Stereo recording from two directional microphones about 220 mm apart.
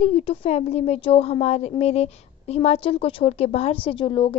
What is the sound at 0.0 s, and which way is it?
A woman's voice, 25° left (ahead or behind).